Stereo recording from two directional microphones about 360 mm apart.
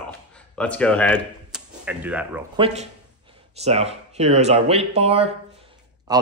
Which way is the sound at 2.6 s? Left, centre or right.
Centre.